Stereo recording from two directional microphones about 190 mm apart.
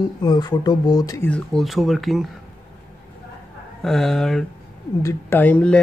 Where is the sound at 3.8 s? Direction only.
Centre (ahead or behind).